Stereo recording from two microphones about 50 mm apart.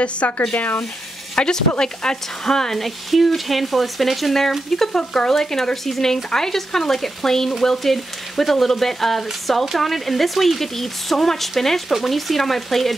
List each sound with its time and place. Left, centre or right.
0.0 s speech: left; by 12.9 s centre